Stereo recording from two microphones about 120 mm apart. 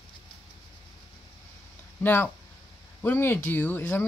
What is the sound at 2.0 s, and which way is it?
Speech, 20° left (ahead or behind).